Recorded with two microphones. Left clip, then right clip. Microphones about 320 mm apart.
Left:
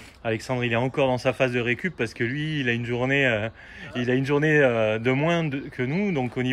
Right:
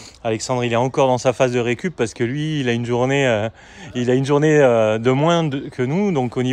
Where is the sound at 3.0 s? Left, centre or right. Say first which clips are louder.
Right 5 dB; centre.